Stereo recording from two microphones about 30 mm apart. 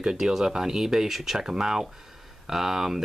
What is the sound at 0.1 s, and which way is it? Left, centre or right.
Speech, centre.